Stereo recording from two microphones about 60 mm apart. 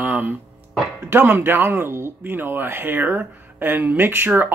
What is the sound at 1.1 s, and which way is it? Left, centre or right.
Speech, right.